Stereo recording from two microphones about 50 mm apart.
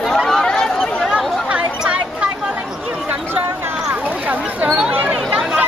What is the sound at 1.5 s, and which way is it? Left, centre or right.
Chatter, right.